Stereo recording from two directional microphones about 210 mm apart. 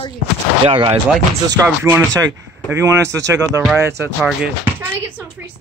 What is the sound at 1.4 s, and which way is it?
Speech, 15° right (ahead or behind).